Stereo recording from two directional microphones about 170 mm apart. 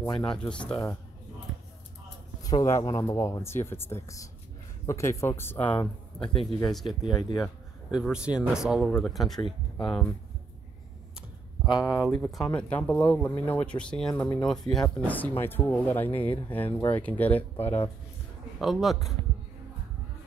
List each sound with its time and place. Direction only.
0.0 s speech: 25° left (ahead or behind)
0.4 s speech: 5° left (ahead or behind)
2.6 s speech: 20° left (ahead or behind)
6.2 s speech: 30° left (ahead or behind)
6.7 s speech: centre (ahead or behind)
11.6 s speech: 25° left (ahead or behind)
12.1 s speech: centre (ahead or behind)
18.6 s speech: centre (ahead or behind)